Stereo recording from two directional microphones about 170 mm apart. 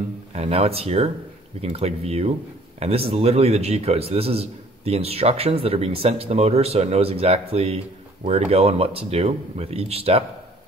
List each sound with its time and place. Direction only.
0.3 s a man's voice: 35° right (ahead or behind)